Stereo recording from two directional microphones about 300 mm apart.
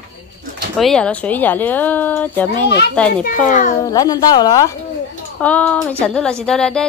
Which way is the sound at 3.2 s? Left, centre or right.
Left.